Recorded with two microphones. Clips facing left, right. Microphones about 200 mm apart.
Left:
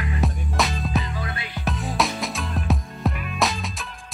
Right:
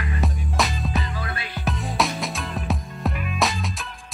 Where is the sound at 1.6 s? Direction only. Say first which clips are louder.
Even; centre (ahead or behind).